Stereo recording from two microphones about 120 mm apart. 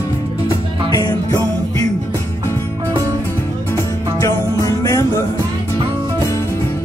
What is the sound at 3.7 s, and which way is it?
Music, 25° left (ahead or behind).